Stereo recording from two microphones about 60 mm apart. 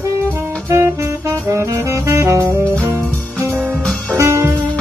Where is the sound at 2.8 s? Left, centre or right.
Right.